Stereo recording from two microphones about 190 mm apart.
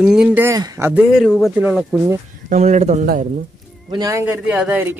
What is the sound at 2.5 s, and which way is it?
Speech, 35° right (ahead or behind).